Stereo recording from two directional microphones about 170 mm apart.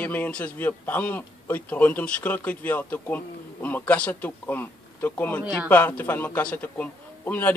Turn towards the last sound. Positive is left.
turn(degrees=10)  # may be behind; listen again after turning